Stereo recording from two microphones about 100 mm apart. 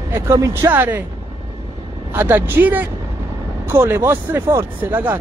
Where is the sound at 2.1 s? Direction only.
20° right (ahead or behind).